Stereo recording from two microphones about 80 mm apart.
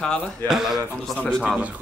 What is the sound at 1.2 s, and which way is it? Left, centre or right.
Speech, centre.